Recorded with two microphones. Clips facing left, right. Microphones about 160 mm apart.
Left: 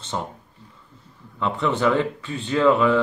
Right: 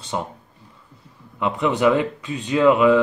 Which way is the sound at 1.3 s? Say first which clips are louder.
Right 2 dB; 15° right (ahead or behind).